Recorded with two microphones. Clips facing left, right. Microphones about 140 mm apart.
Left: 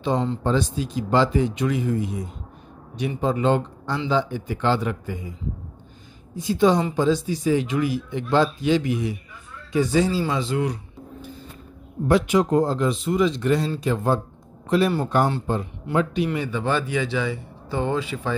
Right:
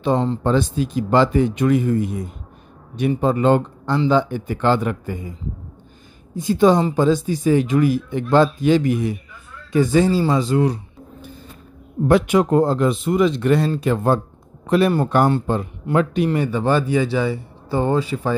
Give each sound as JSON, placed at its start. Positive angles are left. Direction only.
{"t": 0.4, "sound": "speech", "side_deg": -55}
{"t": 6.3, "sound": "speech", "side_deg": -50}
{"t": 10.2, "sound": "speech", "side_deg": -40}
{"t": 12.1, "sound": "speech", "side_deg": -60}
{"t": 16.3, "sound": "speech", "side_deg": -40}